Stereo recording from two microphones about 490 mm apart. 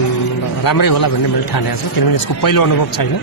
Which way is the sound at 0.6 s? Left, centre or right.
Left.